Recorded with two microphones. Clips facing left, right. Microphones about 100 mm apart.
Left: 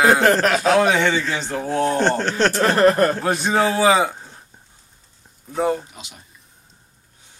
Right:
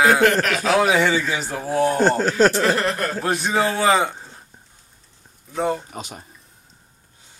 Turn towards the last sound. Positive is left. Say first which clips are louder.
# right 8 dB
turn(degrees=-45)  # may be behind; listen again after turning